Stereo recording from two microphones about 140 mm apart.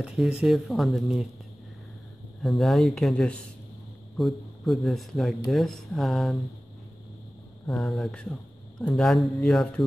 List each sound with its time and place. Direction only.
0.0 s speech: 5° right (ahead or behind)
2.4 s speech: centre (ahead or behind)
7.7 s speech: 5° left (ahead or behind)